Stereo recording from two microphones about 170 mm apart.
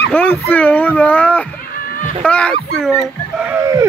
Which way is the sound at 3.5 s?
20° right (ahead or behind).